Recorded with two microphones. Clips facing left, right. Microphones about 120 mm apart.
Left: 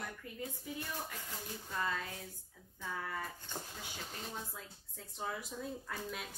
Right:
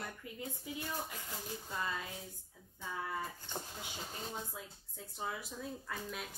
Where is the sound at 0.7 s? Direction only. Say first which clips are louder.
Right 2 dB; 15° right (ahead or behind).